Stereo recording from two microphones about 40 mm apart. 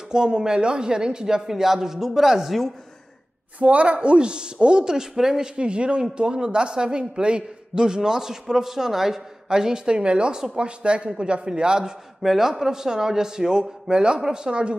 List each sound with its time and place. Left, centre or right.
0.1 s speech: centre
3.5 s a man's voice: right; by 5.5 s centre
5.6 s a man's voice: right
12.2 s speech: centre; by 14.8 s right